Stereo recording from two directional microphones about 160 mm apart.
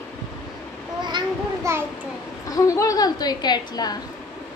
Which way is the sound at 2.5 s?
20° left (ahead or behind).